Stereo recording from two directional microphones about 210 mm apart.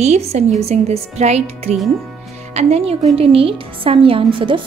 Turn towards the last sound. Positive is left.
turn(degrees=-25)  # may be behind; listen again after turning